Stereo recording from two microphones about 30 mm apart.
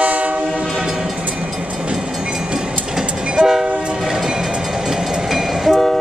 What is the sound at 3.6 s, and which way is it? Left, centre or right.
Train, right.